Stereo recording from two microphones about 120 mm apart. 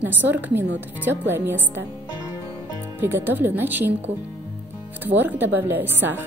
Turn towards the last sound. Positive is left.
turn(degrees=-15)  # may be behind; listen again after turning